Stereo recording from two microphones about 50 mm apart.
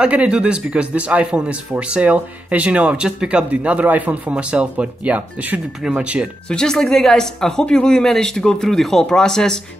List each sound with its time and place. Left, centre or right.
0.0 s speech: right
6.5 s speech: centre